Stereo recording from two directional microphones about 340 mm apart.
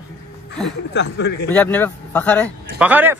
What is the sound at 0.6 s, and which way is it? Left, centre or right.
Speech, left.